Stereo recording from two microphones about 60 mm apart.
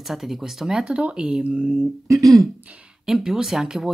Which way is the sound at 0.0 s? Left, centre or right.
Centre.